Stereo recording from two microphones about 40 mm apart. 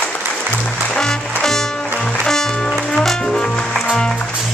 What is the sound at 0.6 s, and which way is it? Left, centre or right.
Music, centre.